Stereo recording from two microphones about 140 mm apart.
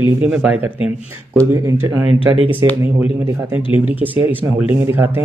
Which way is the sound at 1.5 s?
20° right (ahead or behind).